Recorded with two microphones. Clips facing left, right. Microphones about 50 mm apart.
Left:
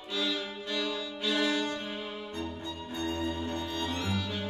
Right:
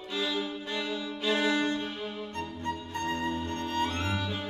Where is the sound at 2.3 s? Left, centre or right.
Right.